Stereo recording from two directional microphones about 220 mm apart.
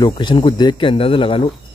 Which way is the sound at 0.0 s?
20° left (ahead or behind).